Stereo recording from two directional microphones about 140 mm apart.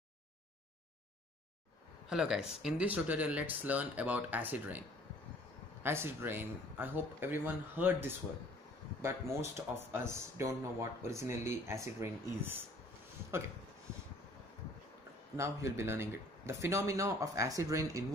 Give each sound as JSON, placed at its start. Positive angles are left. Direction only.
{"t": 2.0, "sound": "speech", "side_deg": -5}
{"t": 15.3, "sound": "speech", "side_deg": -20}